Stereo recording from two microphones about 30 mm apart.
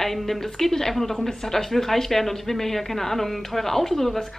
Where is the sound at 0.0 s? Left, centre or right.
Centre.